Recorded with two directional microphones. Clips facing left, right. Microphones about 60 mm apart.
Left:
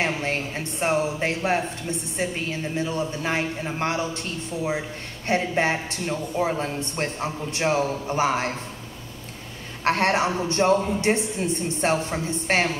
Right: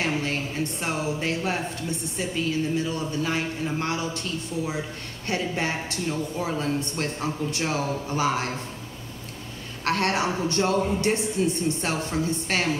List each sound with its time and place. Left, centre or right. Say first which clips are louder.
0.0 s speech: left 1 dB; left
9.8 s speech: left 3 dB; left